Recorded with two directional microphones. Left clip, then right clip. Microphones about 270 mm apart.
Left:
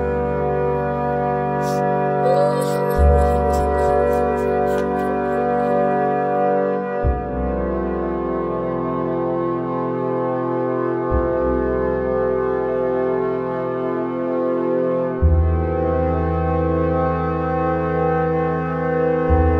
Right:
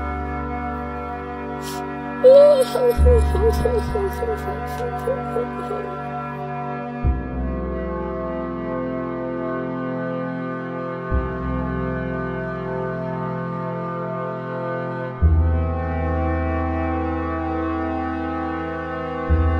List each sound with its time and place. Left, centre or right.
2.2 s music: centre